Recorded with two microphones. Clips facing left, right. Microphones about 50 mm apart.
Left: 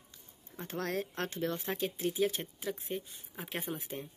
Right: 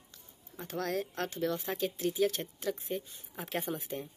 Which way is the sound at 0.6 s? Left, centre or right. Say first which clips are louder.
Right 1 dB; left.